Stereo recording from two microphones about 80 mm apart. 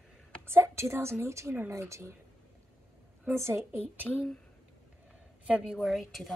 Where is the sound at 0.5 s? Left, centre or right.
Right.